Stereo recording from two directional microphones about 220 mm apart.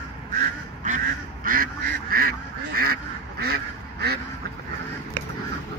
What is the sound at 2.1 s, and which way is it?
Duck, 40° right (ahead or behind).